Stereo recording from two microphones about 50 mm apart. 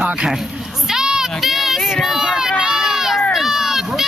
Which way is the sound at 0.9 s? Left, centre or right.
Centre.